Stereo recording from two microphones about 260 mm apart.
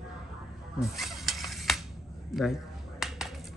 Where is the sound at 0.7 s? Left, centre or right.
Centre.